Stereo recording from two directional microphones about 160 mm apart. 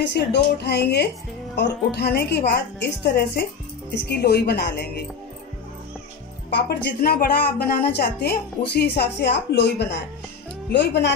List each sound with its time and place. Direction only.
0.1 s speech: 90° left
6.5 s a woman's voice: 75° left (ahead or behind); by 11.1 s 90° left